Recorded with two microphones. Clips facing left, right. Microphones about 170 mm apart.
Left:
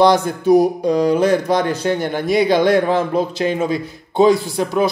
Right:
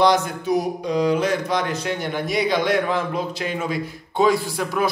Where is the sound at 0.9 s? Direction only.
40° left (ahead or behind).